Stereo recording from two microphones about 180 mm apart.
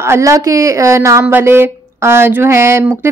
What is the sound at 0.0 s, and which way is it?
Speech, 15° right (ahead or behind).